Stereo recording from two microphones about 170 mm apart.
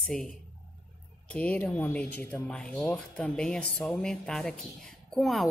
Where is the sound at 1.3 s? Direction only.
10° left (ahead or behind).